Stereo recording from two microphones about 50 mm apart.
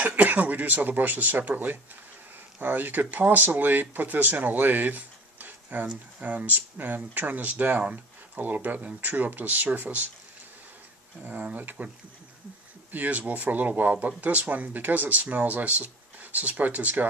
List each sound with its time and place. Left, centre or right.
0.0 s speech: right
11.2 s speech: right
12.9 s speech: right